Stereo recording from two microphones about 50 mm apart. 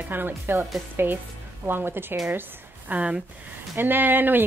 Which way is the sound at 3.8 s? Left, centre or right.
Right.